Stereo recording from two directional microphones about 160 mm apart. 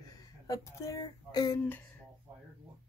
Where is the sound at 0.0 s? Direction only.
25° left (ahead or behind).